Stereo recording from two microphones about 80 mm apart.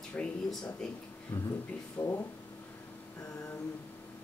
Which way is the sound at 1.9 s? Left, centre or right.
Left.